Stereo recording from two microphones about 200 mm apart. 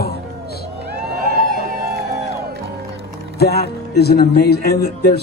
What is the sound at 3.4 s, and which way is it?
Speech, 50° left (ahead or behind).